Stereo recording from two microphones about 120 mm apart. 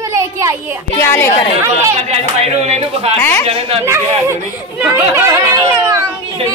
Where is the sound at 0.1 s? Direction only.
25° right (ahead or behind).